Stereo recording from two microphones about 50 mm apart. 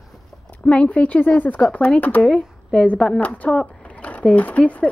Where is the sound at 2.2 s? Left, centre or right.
Left.